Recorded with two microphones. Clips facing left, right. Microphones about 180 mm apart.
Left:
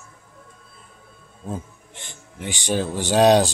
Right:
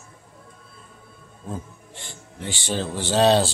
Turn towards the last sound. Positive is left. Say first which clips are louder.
# left 3 dB
turn(degrees=15)  # may be behind; listen again after turning